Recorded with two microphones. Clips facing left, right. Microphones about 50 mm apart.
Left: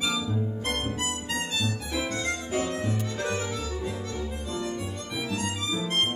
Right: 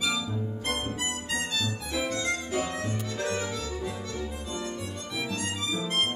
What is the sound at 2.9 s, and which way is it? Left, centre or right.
Music, centre.